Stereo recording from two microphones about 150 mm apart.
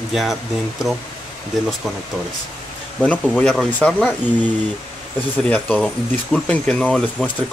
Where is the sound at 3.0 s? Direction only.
10° left (ahead or behind).